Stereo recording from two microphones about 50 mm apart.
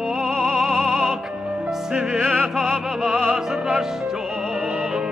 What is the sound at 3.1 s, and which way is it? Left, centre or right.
Opera, right.